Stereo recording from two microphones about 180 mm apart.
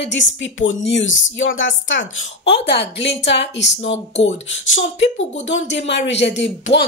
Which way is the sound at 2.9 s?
75° left (ahead or behind).